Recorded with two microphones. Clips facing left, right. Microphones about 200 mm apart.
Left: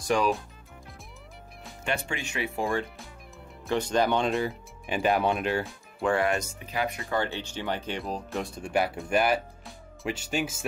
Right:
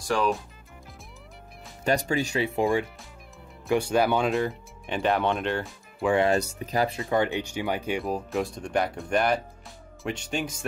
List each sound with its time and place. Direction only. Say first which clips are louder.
0.1 s speech: even; 15° left (ahead or behind)
1.9 s speech: right 7 dB; 40° right (ahead or behind)
2.5 s speech: right 3 dB; 15° right (ahead or behind); by 6.1 s centre (ahead or behind)
6.1 s speech: right 4 dB; 30° right (ahead or behind)
7.0 s speech: right 5 dB; 20° right (ahead or behind); by 10.6 s 5° left (ahead or behind)